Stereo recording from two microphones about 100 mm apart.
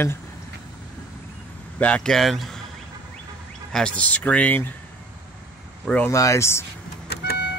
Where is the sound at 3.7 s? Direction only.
10° left (ahead or behind).